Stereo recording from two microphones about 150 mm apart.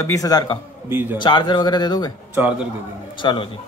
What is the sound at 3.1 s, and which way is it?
Speech, 30° left (ahead or behind).